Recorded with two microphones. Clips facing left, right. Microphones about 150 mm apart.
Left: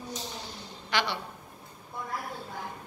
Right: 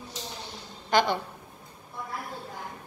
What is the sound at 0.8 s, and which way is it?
Speech, 45° right (ahead or behind).